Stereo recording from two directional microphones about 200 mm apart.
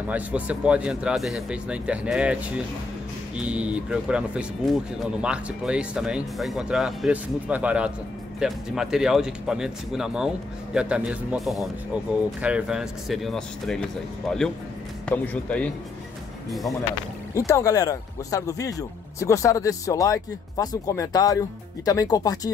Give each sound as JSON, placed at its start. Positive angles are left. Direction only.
{"t": 0.1, "sound": "speech", "side_deg": -5}
{"t": 15.0, "sound": "speech", "side_deg": 5}
{"t": 17.3, "sound": "speech", "side_deg": 15}